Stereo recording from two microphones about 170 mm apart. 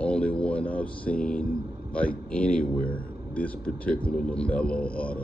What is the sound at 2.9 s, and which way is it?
A man's voice, 10° left (ahead or behind).